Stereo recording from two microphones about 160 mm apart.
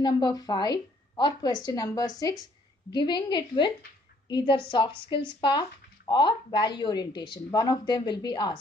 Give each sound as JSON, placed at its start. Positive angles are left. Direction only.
{"t": 0.0, "sound": "speech", "side_deg": 25}